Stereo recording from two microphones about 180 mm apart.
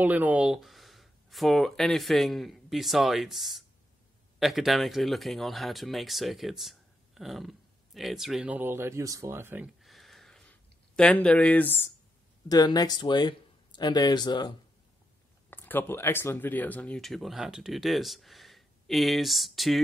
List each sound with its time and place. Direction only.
0.0 s speech: 10° right (ahead or behind)
9.8 s a sound: centre (ahead or behind)
12.4 s speech: 20° left (ahead or behind)
15.5 s speech: 10° left (ahead or behind)